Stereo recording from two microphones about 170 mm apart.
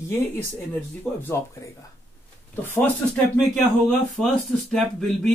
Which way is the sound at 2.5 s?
10° left (ahead or behind).